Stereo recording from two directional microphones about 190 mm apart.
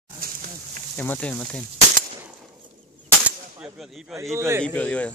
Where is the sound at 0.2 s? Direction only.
50° right (ahead or behind).